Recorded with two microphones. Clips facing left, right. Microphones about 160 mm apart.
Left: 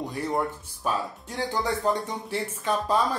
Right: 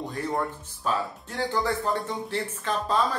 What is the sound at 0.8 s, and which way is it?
Speech, 15° left (ahead or behind).